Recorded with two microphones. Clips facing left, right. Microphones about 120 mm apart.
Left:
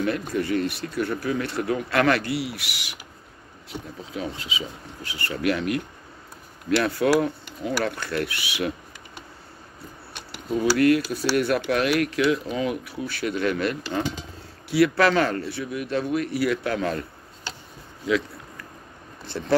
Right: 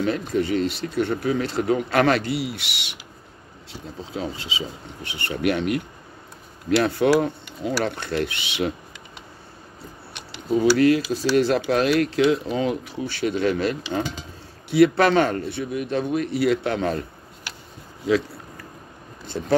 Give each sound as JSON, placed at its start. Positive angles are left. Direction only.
{"t": 0.0, "sound": "speech", "side_deg": -25}
{"t": 10.9, "sound": "speech", "side_deg": -25}
{"t": 19.2, "sound": "speech", "side_deg": -15}